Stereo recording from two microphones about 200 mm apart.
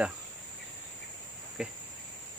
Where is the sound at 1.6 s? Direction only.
5° right (ahead or behind).